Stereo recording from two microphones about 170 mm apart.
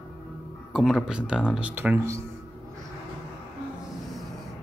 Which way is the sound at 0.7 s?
5° right (ahead or behind).